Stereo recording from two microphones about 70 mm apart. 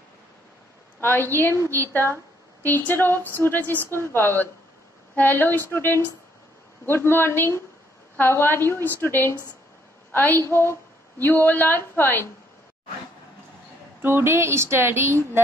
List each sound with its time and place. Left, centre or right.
1.0 s a woman's voice: left
2.6 s a woman's voice: left
14.0 s speech: right